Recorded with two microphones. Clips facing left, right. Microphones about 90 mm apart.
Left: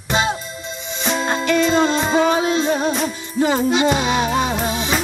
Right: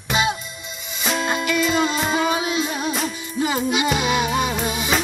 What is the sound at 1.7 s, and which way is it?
Music, 35° left (ahead or behind).